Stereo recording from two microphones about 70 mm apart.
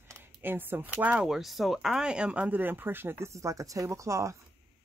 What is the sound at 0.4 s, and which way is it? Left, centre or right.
Speech, right.